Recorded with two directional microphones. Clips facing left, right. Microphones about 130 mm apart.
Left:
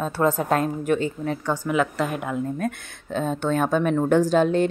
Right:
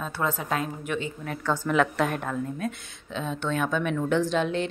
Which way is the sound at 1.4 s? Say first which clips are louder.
Right 1 dB; 15° left (ahead or behind).